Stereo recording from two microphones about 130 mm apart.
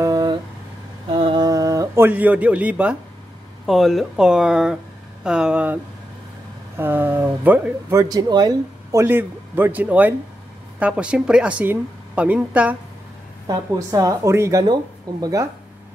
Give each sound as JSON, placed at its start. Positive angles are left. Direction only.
{"t": 0.0, "sound": "a sound", "side_deg": -30}
{"t": 1.0, "sound": "a sound", "side_deg": -40}
{"t": 3.6, "sound": "speech", "side_deg": 0}
{"t": 6.8, "sound": "speech", "side_deg": -15}
{"t": 9.0, "sound": "speech", "side_deg": -15}
{"t": 13.5, "sound": "speech", "side_deg": -25}